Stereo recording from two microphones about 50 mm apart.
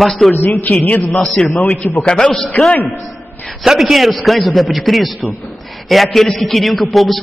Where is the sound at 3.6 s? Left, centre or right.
Centre.